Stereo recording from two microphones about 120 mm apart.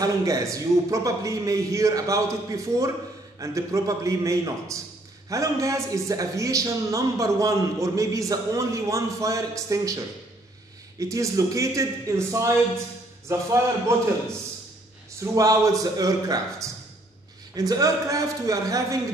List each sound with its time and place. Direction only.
0.0 s a man's voice: 30° right (ahead or behind)
15.1 s a man's voice: 30° right (ahead or behind)